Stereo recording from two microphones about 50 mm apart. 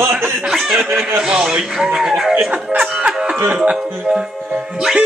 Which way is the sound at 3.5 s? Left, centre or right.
Centre.